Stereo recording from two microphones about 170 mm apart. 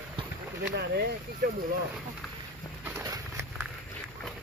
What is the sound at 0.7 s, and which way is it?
Speech, 70° right (ahead or behind).